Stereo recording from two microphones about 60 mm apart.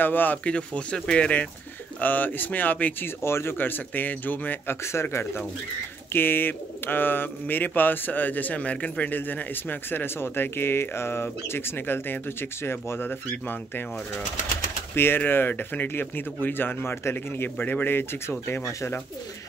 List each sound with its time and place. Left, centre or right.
0.0 s speech: left
0.5 s speech: centre
2.0 s speech: left
3.2 s speech: left
3.5 s speech: left
6.1 s speech: left
15.0 s speech: left